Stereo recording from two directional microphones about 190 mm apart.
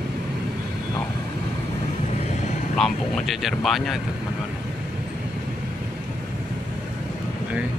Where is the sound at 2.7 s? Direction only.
Centre (ahead or behind).